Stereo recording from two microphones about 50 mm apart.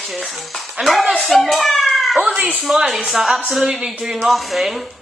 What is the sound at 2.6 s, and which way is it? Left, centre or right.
Music, centre.